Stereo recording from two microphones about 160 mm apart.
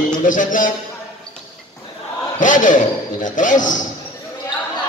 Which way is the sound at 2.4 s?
55° left (ahead or behind).